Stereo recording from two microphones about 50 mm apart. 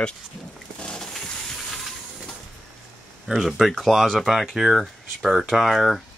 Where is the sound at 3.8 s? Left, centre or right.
Centre.